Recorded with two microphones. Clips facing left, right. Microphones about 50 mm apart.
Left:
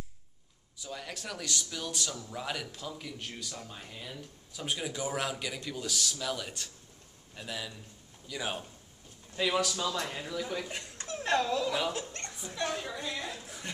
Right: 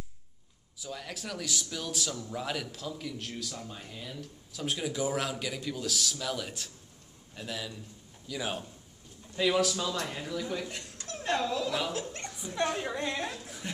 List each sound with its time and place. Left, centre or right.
0.7 s speech: centre
12.5 s a woman's voice: right
12.9 s a woman's voice: right